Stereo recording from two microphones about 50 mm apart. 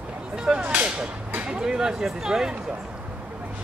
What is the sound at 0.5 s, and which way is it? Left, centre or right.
Speech, right.